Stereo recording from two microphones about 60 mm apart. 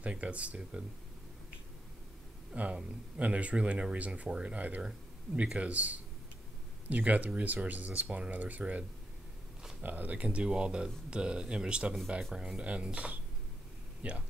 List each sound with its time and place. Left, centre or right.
0.0 s speech: right
2.5 s speech: right
9.6 s a sound: centre
9.8 s speech: right